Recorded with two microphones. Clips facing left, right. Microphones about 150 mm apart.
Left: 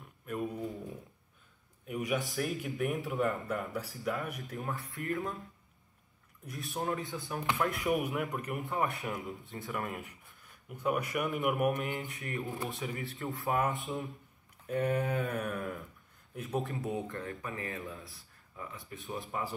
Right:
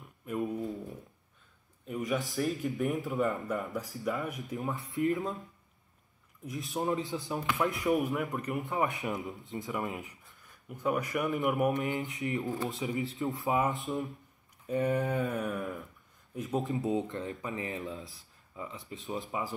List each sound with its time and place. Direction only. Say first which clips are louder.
1.9 s a sound: right 1 dB; 10° left (ahead or behind)
2.3 s speech: right 3 dB; centre (ahead or behind)
3.7 s speech: right 2 dB; 15° right (ahead or behind)
4.0 s speech: right 2 dB; centre (ahead or behind)
4.3 s speech: right 3 dB; 20° right (ahead or behind)
6.6 s speech: right 3 dB; 20° right (ahead or behind)
7.7 s speech: right 3 dB; centre (ahead or behind)
8.7 s speech: right 2 dB; 20° right (ahead or behind)
9.7 s speech: right 1 dB; centre (ahead or behind)
11.6 s speech: right 2 dB; 20° right (ahead or behind)
13.6 s speech: right 2 dB; centre (ahead or behind)
16.3 s speech: right 3 dB; 20° right (ahead or behind)